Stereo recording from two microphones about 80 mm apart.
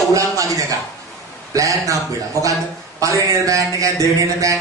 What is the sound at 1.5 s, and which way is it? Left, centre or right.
Speech, right.